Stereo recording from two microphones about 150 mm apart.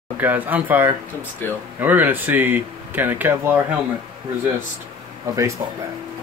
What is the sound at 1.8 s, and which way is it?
Speech, 10° right (ahead or behind).